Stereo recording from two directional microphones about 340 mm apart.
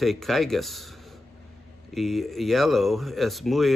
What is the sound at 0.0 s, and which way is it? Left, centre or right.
Speech, centre.